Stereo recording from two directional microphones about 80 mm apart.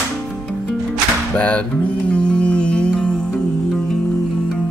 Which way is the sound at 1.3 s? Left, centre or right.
Centre.